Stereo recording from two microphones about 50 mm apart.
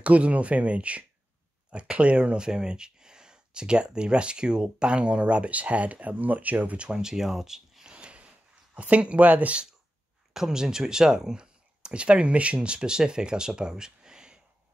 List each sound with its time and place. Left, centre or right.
0.0 s speech: right
6.8 s a sound: centre
8.7 s speech: right
10.3 s speech: centre